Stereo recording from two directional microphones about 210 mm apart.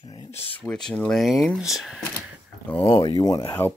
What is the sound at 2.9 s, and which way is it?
Speech, 20° left (ahead or behind).